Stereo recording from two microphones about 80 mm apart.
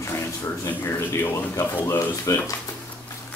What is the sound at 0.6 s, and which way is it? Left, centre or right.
Speech, left.